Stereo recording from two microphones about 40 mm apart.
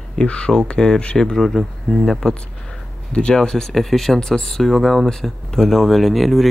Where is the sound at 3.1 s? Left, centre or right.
Left.